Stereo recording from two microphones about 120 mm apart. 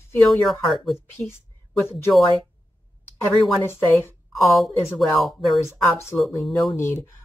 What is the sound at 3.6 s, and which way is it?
Speech, 20° left (ahead or behind).